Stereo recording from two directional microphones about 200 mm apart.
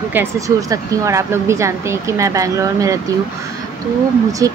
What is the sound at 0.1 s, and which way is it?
Speech, 15° right (ahead or behind).